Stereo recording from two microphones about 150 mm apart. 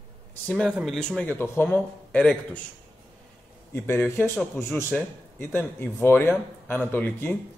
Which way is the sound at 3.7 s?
15° left (ahead or behind).